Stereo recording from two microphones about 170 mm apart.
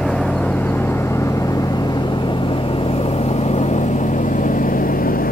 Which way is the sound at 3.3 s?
40° left (ahead or behind).